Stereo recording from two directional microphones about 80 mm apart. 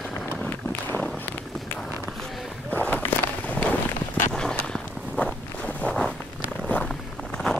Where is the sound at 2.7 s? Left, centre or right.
Left.